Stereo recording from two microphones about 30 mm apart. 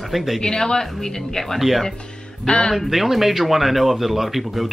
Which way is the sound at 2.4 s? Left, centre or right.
Left.